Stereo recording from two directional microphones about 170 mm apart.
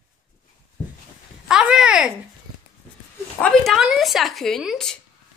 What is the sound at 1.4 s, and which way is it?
Speech, 5° right (ahead or behind).